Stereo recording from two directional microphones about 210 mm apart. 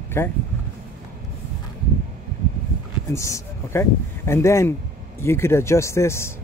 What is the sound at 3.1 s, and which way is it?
Speech, 15° left (ahead or behind).